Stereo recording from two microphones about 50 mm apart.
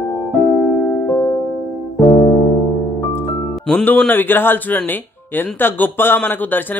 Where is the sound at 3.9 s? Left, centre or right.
Left.